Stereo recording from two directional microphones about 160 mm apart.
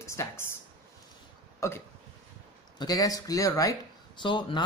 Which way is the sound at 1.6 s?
20° left (ahead or behind).